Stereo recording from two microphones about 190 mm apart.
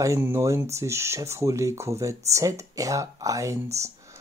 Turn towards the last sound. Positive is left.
turn(degrees=-15)  # may be behind; listen again after turning